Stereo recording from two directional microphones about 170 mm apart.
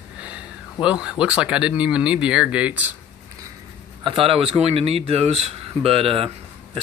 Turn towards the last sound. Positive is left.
turn(degrees=-35)  # may be behind; listen again after turning